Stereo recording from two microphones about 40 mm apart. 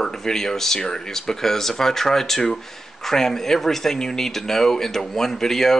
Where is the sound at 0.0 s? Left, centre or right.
Centre.